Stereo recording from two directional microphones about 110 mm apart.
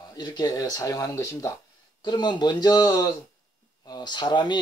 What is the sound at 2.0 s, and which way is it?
Speech, 45° left (ahead or behind).